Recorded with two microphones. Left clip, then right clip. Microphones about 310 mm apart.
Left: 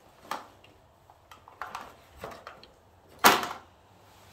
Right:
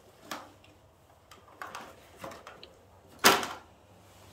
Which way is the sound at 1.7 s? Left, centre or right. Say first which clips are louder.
Left 3 dB; centre.